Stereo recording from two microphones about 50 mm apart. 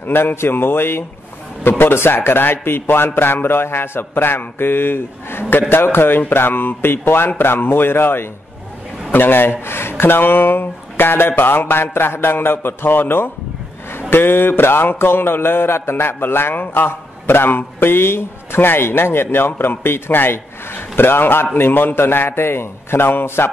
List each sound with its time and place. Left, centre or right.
0.0 s speech: left